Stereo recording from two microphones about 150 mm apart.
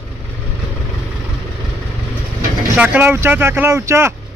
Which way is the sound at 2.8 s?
10° right (ahead or behind).